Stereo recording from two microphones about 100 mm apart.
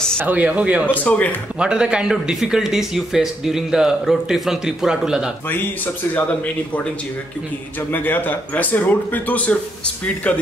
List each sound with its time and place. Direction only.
0.2 s speech: 15° right (ahead or behind)
1.0 s speech: 15° left (ahead or behind)
1.6 s speech: 10° right (ahead or behind)
7.9 s speech: 20° left (ahead or behind)